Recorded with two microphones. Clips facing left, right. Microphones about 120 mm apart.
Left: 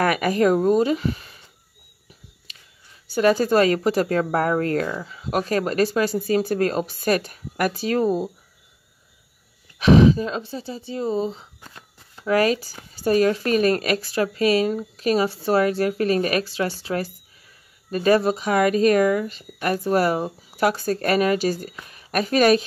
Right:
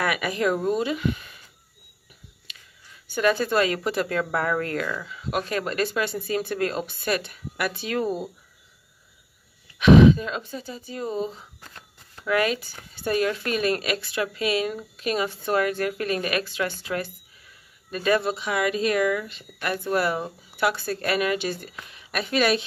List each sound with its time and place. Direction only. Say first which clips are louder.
0.0 s speech: left 5 dB; 45° left (ahead or behind)
2.5 s a sound: right 2 dB; 35° left (ahead or behind)
3.1 s speech: left 5 dB; 35° left (ahead or behind)
9.8 s speech: even; 35° left (ahead or behind)